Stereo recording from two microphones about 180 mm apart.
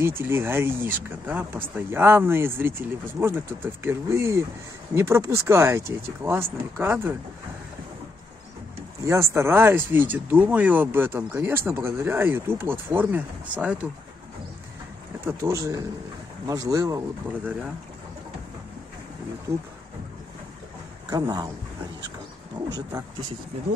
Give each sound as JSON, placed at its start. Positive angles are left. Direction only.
{"t": 0.0, "sound": "speech", "side_deg": -10}
{"t": 9.0, "sound": "speech", "side_deg": -15}
{"t": 15.1, "sound": "speech", "side_deg": -15}
{"t": 19.5, "sound": "speech", "side_deg": -30}
{"t": 21.1, "sound": "speech", "side_deg": -20}
{"t": 22.7, "sound": "speech", "side_deg": -20}